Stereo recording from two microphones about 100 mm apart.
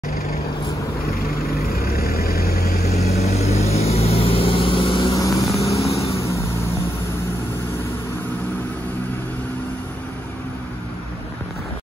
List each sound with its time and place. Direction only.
3.0 s vehicle: 90° left; by 5.1 s 55° left (ahead or behind)
5.1 s vehicle: 35° left (ahead or behind)
5.6 s vehicle: 90° left